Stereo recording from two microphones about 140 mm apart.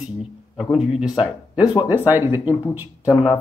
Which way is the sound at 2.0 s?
15° right (ahead or behind).